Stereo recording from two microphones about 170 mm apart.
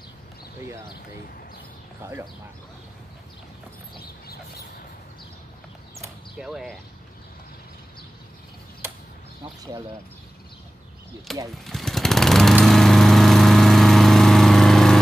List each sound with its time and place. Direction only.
6.3 s speech: centre (ahead or behind)
11.3 s speech: centre (ahead or behind)
11.6 s lawn mower: centre (ahead or behind)